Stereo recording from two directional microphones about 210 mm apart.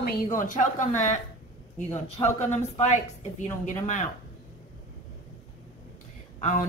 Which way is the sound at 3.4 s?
35° left (ahead or behind).